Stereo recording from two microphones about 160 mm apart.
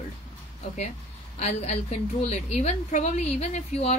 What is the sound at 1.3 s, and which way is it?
A woman's voice, 45° left (ahead or behind).